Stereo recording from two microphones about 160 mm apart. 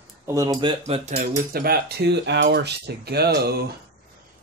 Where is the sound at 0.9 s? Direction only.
40° right (ahead or behind).